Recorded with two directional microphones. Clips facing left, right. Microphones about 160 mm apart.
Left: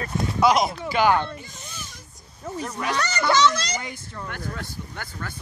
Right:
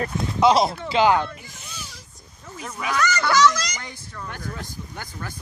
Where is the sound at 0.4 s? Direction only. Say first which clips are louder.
Right 2 dB; 25° right (ahead or behind).